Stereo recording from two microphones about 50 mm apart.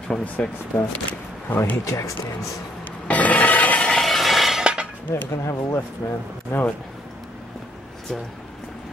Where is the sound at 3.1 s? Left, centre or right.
Left.